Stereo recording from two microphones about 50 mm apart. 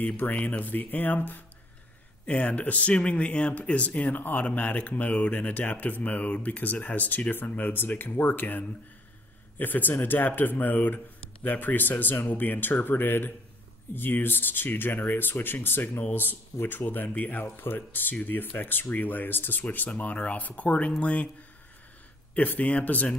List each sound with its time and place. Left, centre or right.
0.0 s speech: left
22.3 s speech: left